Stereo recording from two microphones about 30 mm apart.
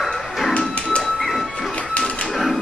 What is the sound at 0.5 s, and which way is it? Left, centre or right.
Music, left.